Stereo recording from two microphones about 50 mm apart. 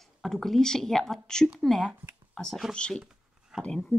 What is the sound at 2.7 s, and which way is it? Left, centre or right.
Speech, centre.